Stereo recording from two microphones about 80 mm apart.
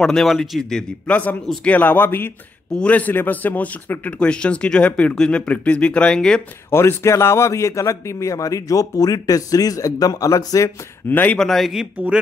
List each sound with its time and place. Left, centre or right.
0.0 s speech: centre
1.6 s a man's voice: left
2.7 s speech: centre
6.7 s a man's voice: left
11.1 s a man's voice: left
11.3 s a man's voice: centre